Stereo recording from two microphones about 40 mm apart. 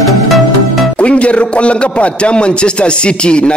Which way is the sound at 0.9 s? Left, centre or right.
Left.